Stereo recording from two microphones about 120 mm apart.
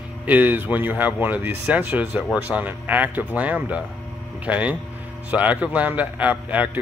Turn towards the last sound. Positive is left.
turn(degrees=-15)  # may be behind; listen again after turning